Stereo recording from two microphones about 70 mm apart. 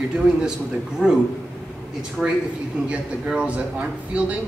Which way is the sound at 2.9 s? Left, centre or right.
Centre.